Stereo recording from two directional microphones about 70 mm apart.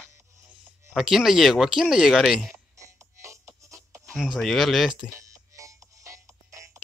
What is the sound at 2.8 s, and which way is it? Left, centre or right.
Music, right.